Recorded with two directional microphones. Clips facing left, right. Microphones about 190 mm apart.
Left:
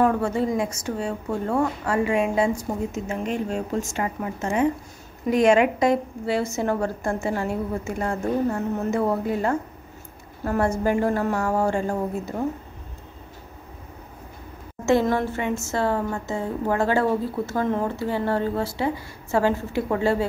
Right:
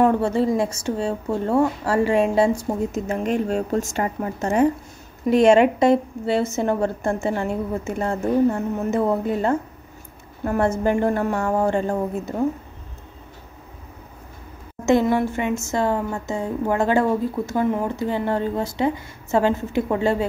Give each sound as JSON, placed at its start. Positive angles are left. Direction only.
{"t": 0.0, "sound": "a woman's voice", "side_deg": -30}
{"t": 5.3, "sound": "a woman's voice", "side_deg": -30}
{"t": 14.9, "sound": "a woman's voice", "side_deg": -15}